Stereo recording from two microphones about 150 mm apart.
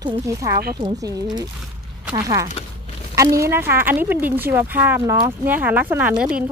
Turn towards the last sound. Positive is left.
turn(degrees=-10)  # may be behind; listen again after turning